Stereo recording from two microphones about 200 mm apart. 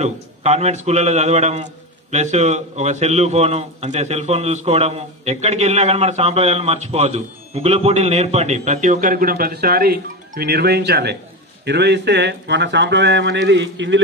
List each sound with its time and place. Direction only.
0.0 s a man's voice: 35° right (ahead or behind); by 13.9 s 65° right (ahead or behind)